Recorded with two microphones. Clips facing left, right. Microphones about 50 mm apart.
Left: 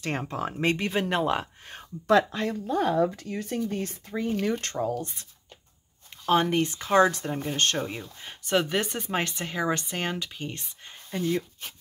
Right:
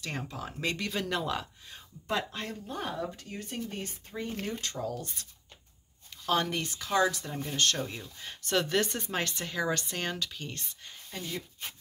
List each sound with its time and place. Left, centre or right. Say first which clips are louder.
0.0 s speech: left 7 dB; left
2.7 s speech: left 12 dB; left
4.7 s speech: left 7 dB; left
6.2 s speech: left 7 dB; left; by 9.1 s centre
9.1 s speech: left 4 dB; centre
11.1 s speech: left 11 dB; left